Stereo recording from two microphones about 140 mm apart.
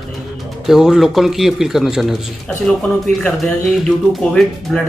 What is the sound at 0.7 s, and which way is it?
Speech, 5° right (ahead or behind).